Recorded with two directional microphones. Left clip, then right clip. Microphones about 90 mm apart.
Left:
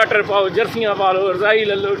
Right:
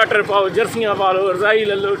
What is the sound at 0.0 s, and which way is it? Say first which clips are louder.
Speech: even; 10° right (ahead or behind).